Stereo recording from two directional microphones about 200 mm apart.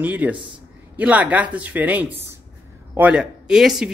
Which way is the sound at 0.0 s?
5° right (ahead or behind).